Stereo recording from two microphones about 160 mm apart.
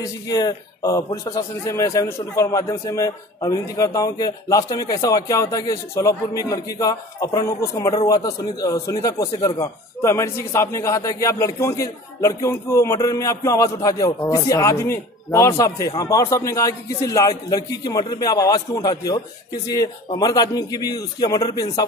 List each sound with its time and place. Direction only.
0.0 s speech: 25° left (ahead or behind)